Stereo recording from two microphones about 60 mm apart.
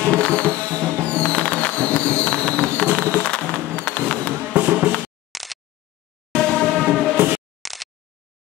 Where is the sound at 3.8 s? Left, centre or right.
Left.